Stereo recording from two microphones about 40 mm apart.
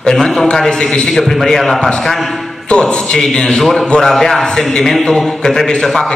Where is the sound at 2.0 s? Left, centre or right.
Centre.